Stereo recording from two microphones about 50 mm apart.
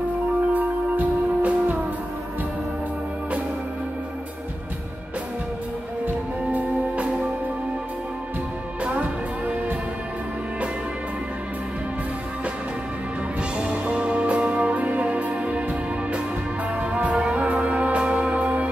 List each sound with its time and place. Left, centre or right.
0.5 s music: right
8.8 s music: right
13.4 s music: right